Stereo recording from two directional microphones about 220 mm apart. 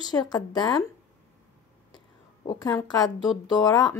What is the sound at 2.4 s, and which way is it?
Speech, 15° left (ahead or behind).